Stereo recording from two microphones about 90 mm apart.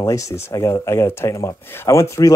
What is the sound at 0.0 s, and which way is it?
Speech, 35° left (ahead or behind).